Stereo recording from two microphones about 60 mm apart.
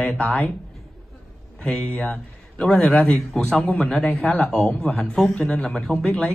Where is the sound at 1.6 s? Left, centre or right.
Centre.